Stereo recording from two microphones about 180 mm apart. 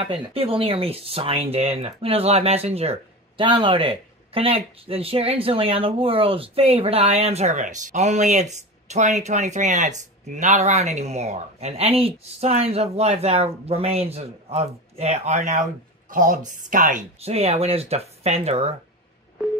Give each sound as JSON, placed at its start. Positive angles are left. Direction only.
{"t": 0.0, "sound": "speech", "side_deg": -30}
{"t": 17.2, "sound": "speech", "side_deg": -35}